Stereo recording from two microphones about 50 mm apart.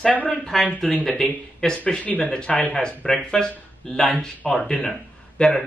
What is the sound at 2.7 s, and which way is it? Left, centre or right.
Speech, centre.